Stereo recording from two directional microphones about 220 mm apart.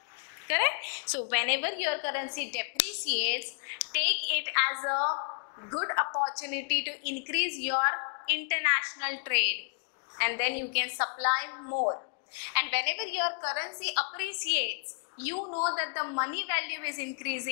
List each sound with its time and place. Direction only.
0.5 s a woman's voice: 15° left (ahead or behind)
5.0 s a woman's voice: 25° left (ahead or behind)
11.7 s speech: 30° left (ahead or behind)
12.4 s a woman's voice: 15° left (ahead or behind)
13.3 s a woman's voice: 25° left (ahead or behind)
13.6 s a woman's voice: 10° left (ahead or behind)
15.4 s speech: 30° left (ahead or behind)
15.7 s a woman's voice: 15° left (ahead or behind)